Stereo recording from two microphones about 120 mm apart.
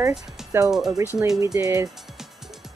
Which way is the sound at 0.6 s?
5° right (ahead or behind).